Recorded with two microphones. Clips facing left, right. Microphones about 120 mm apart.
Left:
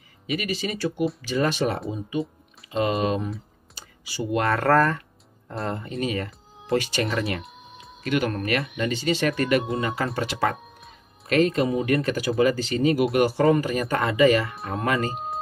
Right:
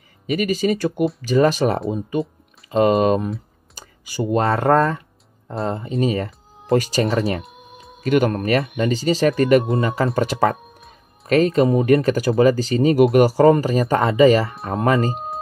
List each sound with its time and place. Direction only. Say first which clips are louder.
0.4 s speech: right 10 dB; 45° right (ahead or behind)
1.9 s speech: right 5 dB; 60° right (ahead or behind)
2.7 s speech: right 8 dB; 45° right (ahead or behind)
3.7 s computer keyboard: right 6 dB; 45° right (ahead or behind)
4.4 s speech: right 3 dB; 25° right (ahead or behind)
6.0 s speech: right 5 dB; 35° right (ahead or behind)